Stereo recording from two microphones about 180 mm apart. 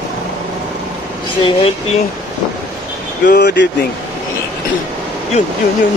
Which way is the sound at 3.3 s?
70° left (ahead or behind).